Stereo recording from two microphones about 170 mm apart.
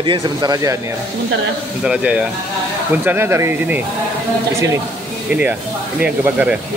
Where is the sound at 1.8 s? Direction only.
5° right (ahead or behind).